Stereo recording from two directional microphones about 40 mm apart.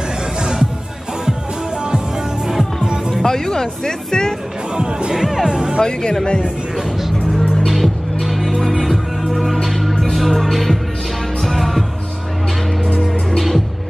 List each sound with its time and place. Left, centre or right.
0.4 s music: centre
2.4 s music: centre
3.3 s speech: centre
4.7 s speech: right
5.1 s speech: centre
5.8 s speech: centre
7.6 s music: centre